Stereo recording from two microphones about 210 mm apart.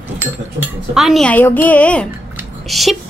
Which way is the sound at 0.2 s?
5° right (ahead or behind).